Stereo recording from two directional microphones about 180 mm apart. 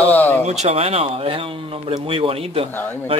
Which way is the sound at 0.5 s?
35° right (ahead or behind).